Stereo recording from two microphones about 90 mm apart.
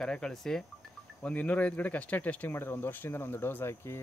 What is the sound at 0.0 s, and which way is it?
Speech, 10° left (ahead or behind).